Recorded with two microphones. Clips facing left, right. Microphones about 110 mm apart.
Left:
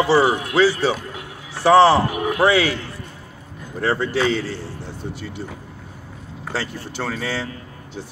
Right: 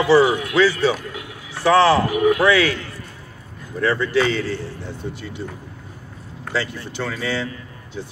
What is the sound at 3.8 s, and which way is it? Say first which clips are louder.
Speech: right 1 dB; 35° left (ahead or behind).